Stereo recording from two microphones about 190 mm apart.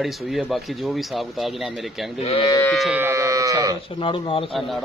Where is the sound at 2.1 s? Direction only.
30° left (ahead or behind).